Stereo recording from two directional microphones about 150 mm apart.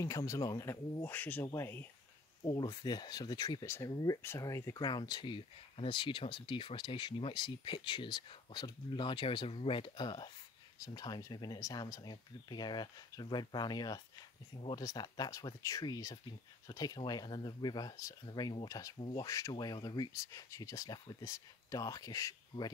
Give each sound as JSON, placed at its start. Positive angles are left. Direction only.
{"t": 0.0, "sound": "speech", "side_deg": 20}
{"t": 18.9, "sound": "speech", "side_deg": 35}
{"t": 19.2, "sound": "speech", "side_deg": 20}